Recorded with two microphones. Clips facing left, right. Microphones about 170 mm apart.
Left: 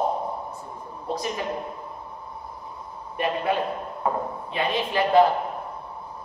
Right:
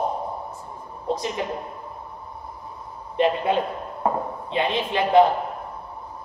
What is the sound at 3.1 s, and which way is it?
A man's voice, 25° right (ahead or behind).